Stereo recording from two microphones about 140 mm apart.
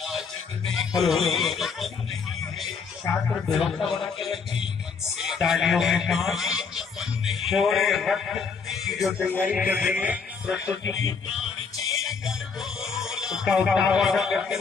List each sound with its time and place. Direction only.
0.7 s music: centre (ahead or behind)
3.1 s speech: 20° left (ahead or behind)
3.5 s a man's voice: centre (ahead or behind)
9.4 s music: 10° right (ahead or behind)
12.0 s music: centre (ahead or behind)
12.8 s speech: 5° right (ahead or behind)